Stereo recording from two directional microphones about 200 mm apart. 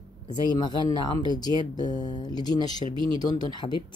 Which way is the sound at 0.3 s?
20° left (ahead or behind).